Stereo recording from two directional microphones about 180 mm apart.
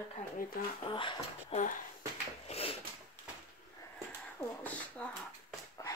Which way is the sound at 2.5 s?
35° left (ahead or behind).